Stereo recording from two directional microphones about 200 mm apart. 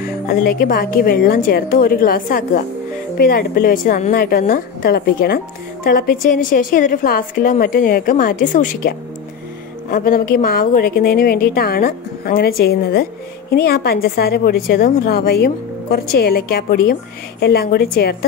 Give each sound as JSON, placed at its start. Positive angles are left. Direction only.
{"t": 0.0, "sound": "a woman's voice", "side_deg": 45}